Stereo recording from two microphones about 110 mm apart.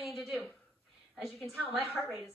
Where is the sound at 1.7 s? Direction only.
10° right (ahead or behind).